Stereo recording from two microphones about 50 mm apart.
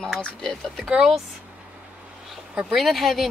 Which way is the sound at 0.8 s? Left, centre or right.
Centre.